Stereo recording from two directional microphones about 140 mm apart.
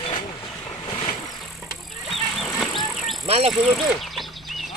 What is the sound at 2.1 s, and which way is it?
Music, centre (ahead or behind).